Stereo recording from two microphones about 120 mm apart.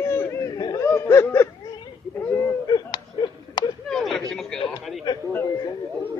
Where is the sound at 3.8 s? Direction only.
5° left (ahead or behind).